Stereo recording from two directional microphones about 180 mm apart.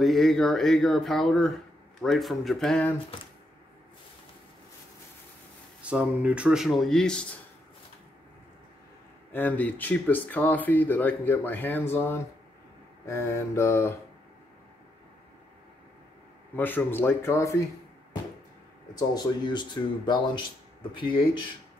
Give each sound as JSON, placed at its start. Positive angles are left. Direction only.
{"t": 0.0, "sound": "speech", "side_deg": 0}
{"t": 5.8, "sound": "speech", "side_deg": -5}
{"t": 9.3, "sound": "speech", "side_deg": 10}
{"t": 16.5, "sound": "speech", "side_deg": 10}
{"t": 18.9, "sound": "speech", "side_deg": 25}